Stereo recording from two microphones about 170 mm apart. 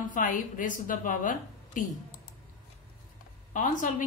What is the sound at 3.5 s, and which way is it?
Speech, 50° left (ahead or behind).